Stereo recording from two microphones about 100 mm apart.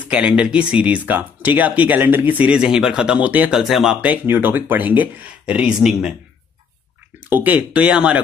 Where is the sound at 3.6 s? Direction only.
5° right (ahead or behind).